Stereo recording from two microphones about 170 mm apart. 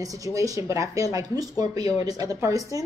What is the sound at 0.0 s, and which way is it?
A woman's voice, 20° right (ahead or behind).